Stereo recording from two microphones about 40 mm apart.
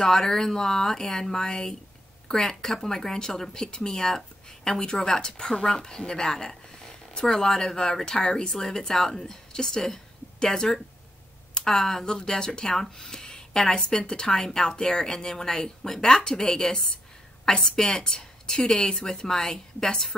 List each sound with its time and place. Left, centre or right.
0.0 s speech: centre
11.5 s a sound: centre
11.8 s speech: centre